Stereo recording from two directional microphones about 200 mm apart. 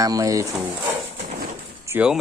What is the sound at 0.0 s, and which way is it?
Speech, 15° right (ahead or behind).